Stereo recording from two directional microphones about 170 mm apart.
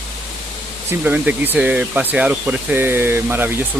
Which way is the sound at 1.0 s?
10° right (ahead or behind).